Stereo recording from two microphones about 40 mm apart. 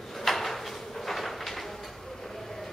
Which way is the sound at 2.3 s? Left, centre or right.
Centre.